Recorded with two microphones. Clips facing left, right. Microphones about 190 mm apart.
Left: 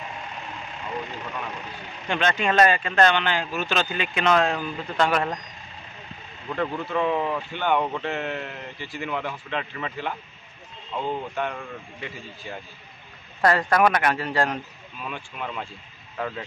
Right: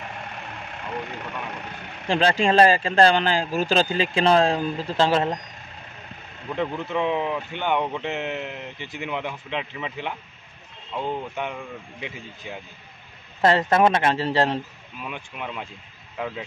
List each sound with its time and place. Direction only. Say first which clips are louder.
2.0 s speech: right 4 dB; 30° right (ahead or behind)
6.5 s speech: even; 20° right (ahead or behind)
13.4 s a man's voice: right 2 dB; 25° right (ahead or behind)
15.0 s speech: even; 10° right (ahead or behind)